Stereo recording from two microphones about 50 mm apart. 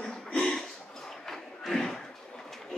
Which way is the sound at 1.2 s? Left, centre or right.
Centre.